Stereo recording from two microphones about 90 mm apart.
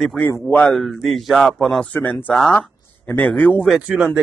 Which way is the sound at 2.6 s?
20° left (ahead or behind).